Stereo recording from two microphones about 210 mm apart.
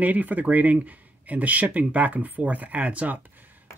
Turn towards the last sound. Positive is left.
turn(degrees=-10)  # may be behind; listen again after turning